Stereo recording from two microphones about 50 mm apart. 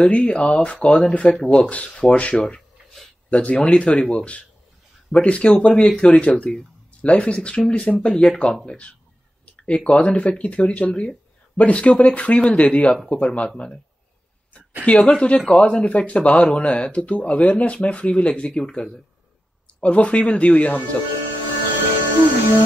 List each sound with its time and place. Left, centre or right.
0.0 s speech: centre
12.9 s speech: centre
14.9 s speech: left